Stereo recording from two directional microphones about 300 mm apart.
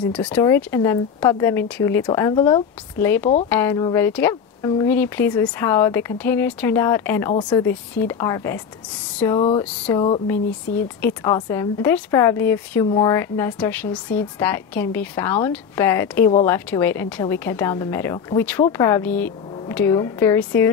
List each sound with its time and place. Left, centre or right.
0.1 s a woman's voice: centre